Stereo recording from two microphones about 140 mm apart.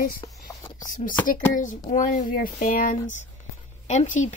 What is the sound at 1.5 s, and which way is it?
Speech, 65° left (ahead or behind).